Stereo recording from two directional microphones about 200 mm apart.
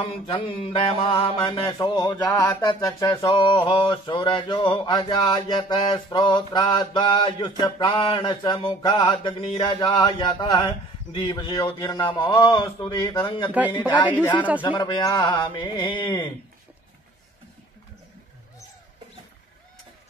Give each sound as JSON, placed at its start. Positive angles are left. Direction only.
{"t": 0.0, "sound": "mantra", "side_deg": 30}
{"t": 13.5, "sound": "speech", "side_deg": -10}
{"t": 13.9, "sound": "mantra", "side_deg": 20}